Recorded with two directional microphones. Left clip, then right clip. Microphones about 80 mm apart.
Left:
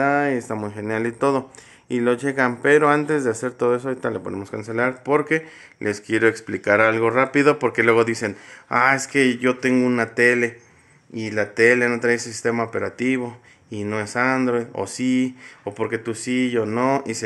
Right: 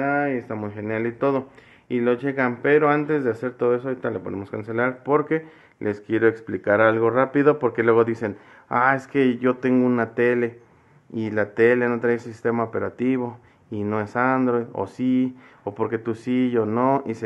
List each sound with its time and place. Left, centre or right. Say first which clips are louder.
0.0 s a sound: left 3 dB; left
0.6 s speech: left 2 dB; left
11.1 s speech: left 1 dB; centre
11.7 s speech: left 2 dB; centre
15.7 s speech: even; centre
16.0 s speech: left 1 dB; centre
16.5 s speech: even; centre